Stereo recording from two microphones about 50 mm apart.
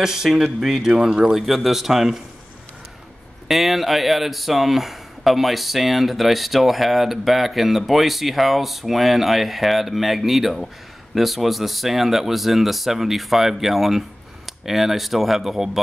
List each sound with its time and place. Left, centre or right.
0.0 s speech: centre
3.4 s speech: centre